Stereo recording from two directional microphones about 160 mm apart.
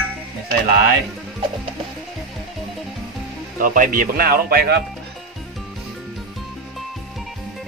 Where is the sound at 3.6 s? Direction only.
60° right (ahead or behind).